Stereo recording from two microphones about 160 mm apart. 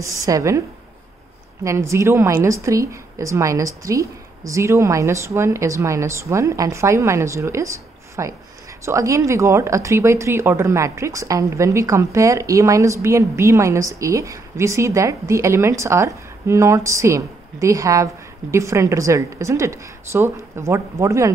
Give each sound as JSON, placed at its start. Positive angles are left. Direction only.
{"t": 0.0, "sound": "speech", "side_deg": -20}